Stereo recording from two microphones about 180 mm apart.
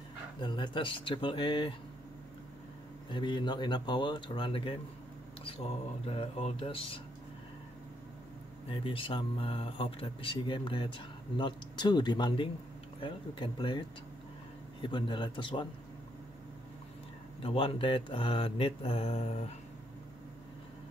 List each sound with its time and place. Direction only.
0.4 s speech: 25° left (ahead or behind)
3.1 s speech: 25° left (ahead or behind)
6.0 s mantra: 35° left (ahead or behind)
8.6 s speech: 30° left (ahead or behind)
17.4 s mantra: 30° left (ahead or behind)